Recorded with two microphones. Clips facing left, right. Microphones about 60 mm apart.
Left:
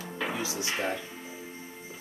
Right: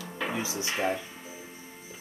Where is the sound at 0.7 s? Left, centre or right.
Centre.